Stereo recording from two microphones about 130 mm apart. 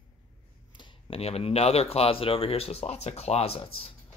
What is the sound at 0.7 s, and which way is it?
Speech, 50° left (ahead or behind).